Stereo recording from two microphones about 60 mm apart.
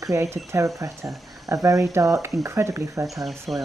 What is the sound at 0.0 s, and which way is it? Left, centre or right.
Speech, right.